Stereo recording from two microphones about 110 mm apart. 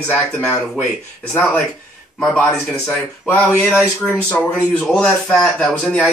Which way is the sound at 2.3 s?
15° left (ahead or behind).